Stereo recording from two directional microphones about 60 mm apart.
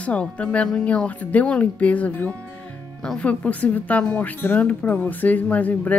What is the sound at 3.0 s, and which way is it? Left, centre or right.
Speech, centre.